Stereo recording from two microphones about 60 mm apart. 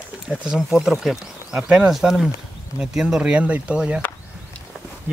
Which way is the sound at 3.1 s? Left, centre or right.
Right.